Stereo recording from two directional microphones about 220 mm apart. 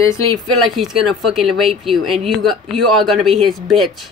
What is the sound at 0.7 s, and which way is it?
Speech, centre (ahead or behind).